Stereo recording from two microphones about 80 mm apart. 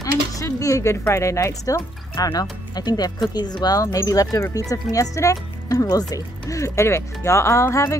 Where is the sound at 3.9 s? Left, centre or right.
Left.